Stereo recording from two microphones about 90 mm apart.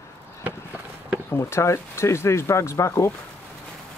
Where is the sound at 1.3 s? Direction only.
30° left (ahead or behind).